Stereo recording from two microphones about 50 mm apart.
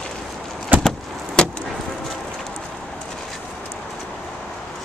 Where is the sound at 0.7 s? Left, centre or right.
Right.